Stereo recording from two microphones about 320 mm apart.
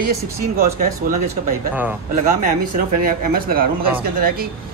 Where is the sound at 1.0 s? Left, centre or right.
Right.